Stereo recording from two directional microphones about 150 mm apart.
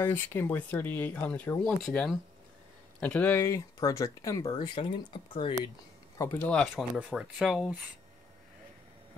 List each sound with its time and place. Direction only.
0.0 s speech: 15° left (ahead or behind); by 5.5 s 35° left (ahead or behind)
6.1 s speech: 15° left (ahead or behind)
6.6 s speech: 5° right (ahead or behind)